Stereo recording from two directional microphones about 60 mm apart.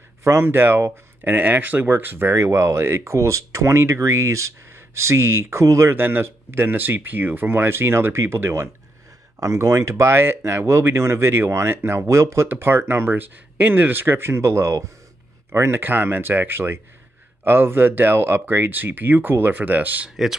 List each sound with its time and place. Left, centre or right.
0.2 s speech: right
5.9 s speech: right
9.4 s speech: right
12.4 s speech: right
15.8 s speech: right